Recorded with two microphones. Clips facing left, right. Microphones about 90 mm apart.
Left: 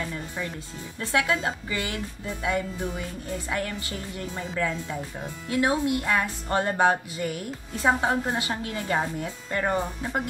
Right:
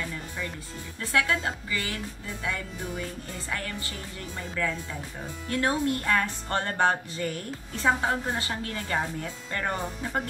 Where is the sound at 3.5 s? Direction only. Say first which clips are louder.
Left 3 dB; 20° left (ahead or behind).